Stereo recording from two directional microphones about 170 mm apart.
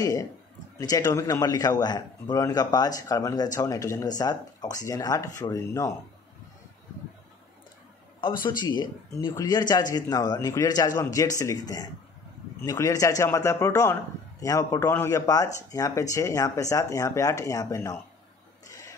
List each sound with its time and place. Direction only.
0.0 s a man's voice: 20° left (ahead or behind)
8.5 s a man's voice: 25° left (ahead or behind)
18.7 s a sound: 20° left (ahead or behind)